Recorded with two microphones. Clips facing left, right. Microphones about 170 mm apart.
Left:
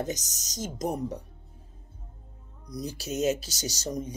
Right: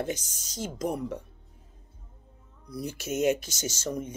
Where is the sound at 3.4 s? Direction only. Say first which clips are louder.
Right 1 dB; 35° left (ahead or behind).